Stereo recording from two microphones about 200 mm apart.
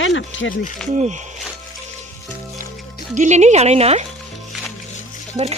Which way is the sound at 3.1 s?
35° right (ahead or behind).